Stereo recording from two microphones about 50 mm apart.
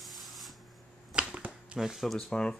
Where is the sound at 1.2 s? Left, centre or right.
Right.